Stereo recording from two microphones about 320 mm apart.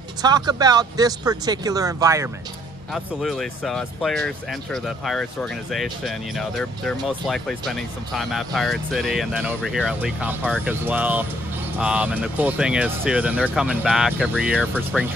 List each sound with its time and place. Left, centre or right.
0.2 s speech: centre
2.9 s speech: centre